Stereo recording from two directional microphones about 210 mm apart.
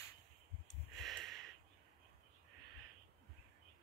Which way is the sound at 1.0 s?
Centre (ahead or behind).